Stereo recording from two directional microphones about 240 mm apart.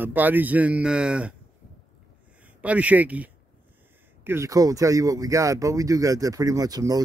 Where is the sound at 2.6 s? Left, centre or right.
Centre.